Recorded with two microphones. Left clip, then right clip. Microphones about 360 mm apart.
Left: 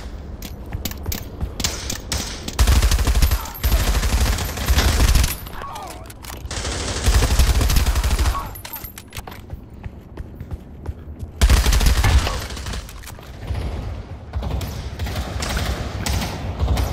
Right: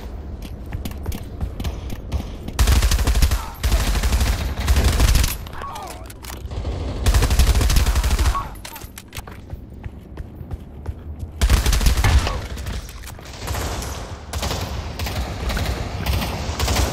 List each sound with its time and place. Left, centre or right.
0.8 s a sound: centre
1.6 s a sound: left
2.5 s machine gun: centre
6.5 s fusillade: left
7.1 s gunshot: centre
11.3 s fusillade: centre
13.4 s mechanisms: right
14.3 s fusillade: right
15.1 s clip-clop: centre
16.5 s fusillade: right